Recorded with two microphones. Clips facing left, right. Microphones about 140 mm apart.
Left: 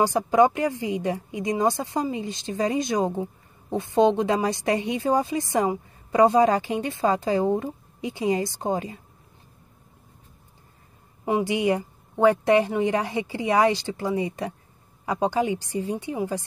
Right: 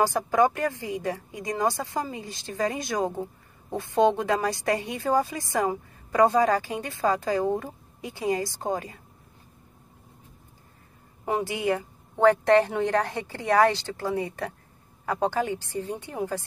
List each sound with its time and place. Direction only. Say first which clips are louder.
0.0 s a woman's voice: left 3 dB; 20° left (ahead or behind)
11.2 s a woman's voice: left 4 dB; 15° left (ahead or behind)